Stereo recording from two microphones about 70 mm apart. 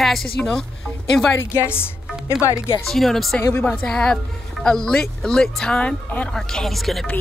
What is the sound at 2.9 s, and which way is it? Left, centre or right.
Speech, centre.